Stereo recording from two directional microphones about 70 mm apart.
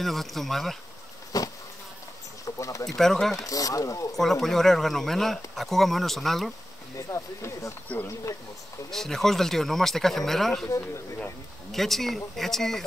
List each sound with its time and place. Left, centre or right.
0.0 s speech: centre
1.3 s insect: left
2.4 s a sound: left
2.9 s speech: centre
3.3 s speech: left
4.1 s speech: centre
7.0 s speech: left
8.9 s speech: centre
11.7 s speech: centre